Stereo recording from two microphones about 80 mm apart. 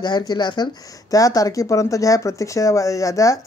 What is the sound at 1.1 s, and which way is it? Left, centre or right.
Speech, left.